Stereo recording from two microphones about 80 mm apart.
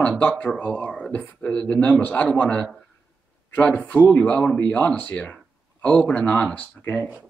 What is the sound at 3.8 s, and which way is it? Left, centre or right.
Speech, left.